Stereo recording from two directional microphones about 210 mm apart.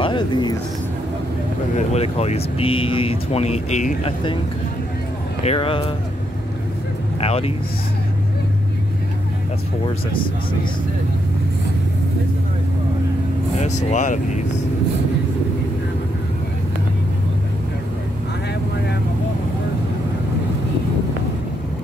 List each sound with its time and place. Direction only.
0.0 s speech: 20° left (ahead or behind)
1.8 s speech: 30° left (ahead or behind)
5.4 s speech: 25° left (ahead or behind)
7.2 s speech: 30° left (ahead or behind)
13.6 s speech: 35° left (ahead or behind)